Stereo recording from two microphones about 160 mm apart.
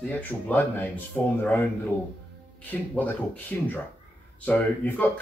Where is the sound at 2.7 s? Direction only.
10° left (ahead or behind).